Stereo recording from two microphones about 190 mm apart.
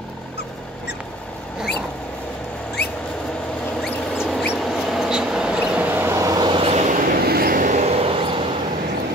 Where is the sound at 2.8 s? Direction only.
60° left (ahead or behind).